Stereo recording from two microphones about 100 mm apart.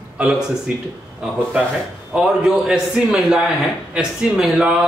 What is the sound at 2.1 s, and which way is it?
Speech, 5° right (ahead or behind).